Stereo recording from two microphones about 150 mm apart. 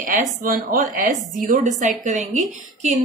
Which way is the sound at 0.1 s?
65° right (ahead or behind).